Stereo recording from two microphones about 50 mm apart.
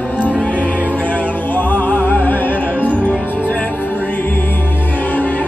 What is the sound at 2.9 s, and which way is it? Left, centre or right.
Music, right.